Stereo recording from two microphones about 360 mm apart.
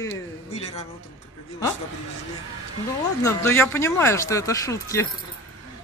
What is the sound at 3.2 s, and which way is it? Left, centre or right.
Speech, centre.